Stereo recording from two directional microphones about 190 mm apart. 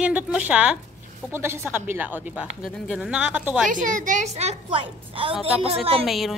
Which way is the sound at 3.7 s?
45° right (ahead or behind).